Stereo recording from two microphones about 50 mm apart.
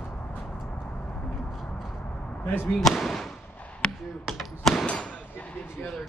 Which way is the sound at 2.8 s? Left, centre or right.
Centre.